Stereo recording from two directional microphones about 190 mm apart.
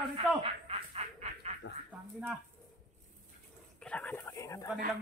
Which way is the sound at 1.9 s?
10° right (ahead or behind).